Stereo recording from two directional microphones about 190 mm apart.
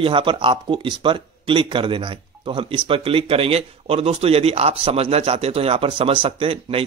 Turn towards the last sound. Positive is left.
turn(degrees=-30)  # may be behind; listen again after turning